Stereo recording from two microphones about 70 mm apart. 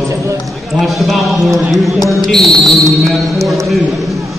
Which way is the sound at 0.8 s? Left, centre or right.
Centre.